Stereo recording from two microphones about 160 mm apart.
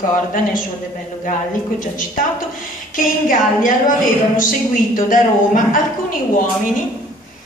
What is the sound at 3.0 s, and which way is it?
A woman's voice, 55° left (ahead or behind).